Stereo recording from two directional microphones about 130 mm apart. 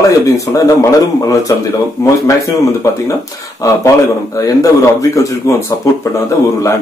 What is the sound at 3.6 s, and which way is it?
Speech, 25° left (ahead or behind).